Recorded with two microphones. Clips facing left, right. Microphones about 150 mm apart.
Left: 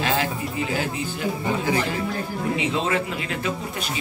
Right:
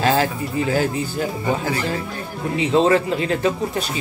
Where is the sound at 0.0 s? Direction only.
40° right (ahead or behind).